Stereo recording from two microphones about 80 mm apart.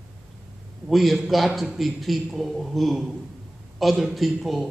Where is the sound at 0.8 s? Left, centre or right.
Centre.